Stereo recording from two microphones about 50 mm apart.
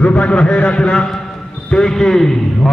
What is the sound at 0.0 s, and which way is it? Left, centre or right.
A man's voice, left.